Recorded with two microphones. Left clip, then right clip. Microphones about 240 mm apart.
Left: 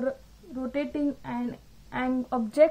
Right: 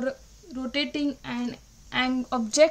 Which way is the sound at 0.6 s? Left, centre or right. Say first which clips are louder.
Right 2 dB; right.